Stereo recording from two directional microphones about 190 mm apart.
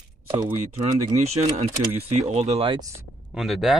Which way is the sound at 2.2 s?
35° right (ahead or behind).